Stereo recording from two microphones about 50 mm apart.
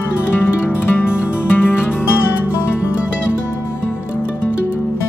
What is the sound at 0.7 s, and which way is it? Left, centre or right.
Music, left.